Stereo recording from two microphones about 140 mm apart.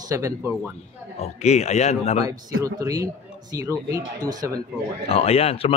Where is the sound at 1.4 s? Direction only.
50° left (ahead or behind).